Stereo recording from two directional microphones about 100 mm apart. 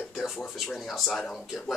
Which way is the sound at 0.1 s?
5° right (ahead or behind).